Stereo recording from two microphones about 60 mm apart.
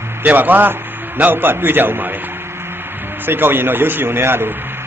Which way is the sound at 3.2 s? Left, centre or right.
Right.